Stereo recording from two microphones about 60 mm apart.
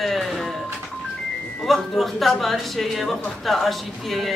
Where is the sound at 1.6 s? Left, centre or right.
Centre.